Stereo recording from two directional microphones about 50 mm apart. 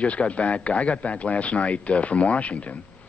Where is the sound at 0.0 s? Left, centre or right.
Left.